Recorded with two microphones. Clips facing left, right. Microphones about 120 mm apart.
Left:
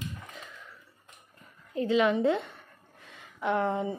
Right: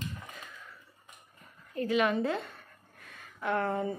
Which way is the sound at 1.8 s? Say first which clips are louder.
Left 3 dB; 20° left (ahead or behind).